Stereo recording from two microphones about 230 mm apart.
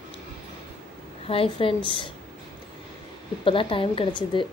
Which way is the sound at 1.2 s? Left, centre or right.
Left.